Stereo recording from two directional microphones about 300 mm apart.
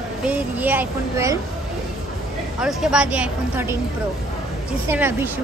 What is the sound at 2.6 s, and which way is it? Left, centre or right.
Speech, centre.